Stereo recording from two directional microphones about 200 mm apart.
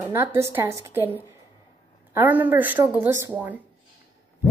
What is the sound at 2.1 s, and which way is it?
Speech, 10° right (ahead or behind).